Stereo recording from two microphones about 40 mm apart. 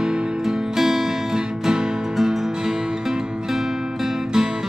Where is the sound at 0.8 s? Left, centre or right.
Centre.